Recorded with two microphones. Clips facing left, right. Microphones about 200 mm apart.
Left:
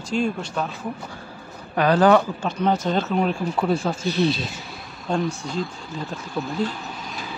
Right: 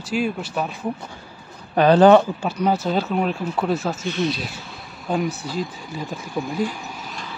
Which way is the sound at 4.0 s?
35° left (ahead or behind).